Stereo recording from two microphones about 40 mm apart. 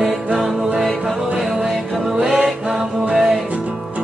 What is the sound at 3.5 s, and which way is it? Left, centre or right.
Music, right.